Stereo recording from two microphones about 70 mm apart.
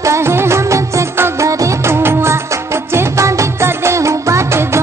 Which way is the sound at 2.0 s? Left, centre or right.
Right.